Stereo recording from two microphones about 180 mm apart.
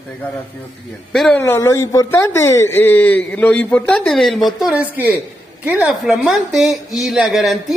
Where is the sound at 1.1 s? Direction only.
5° left (ahead or behind).